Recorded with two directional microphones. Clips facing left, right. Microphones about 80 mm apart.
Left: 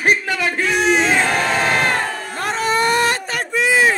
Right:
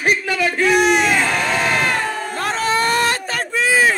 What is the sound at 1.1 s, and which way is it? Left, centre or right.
Crowd, left.